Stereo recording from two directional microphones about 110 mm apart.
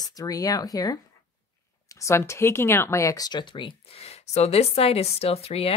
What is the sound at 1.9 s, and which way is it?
Speech, 25° left (ahead or behind).